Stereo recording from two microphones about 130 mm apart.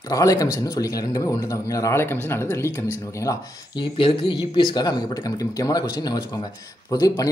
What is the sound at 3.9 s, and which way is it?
Speech, 45° left (ahead or behind).